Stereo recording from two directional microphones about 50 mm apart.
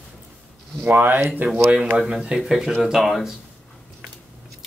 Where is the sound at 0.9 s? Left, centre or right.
Right.